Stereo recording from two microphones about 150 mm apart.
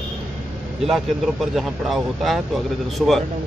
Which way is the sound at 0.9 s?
Centre (ahead or behind).